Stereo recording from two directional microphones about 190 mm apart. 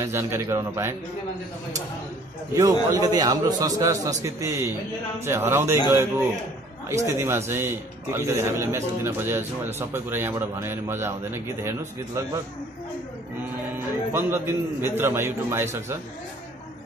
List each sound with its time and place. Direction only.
0.0 s a man's voice: 15° right (ahead or behind)
2.5 s a man's voice: 20° right (ahead or behind)
14.1 s a man's voice: 10° right (ahead or behind)